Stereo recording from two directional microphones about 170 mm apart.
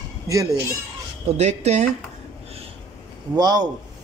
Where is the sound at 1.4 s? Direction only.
40° right (ahead or behind).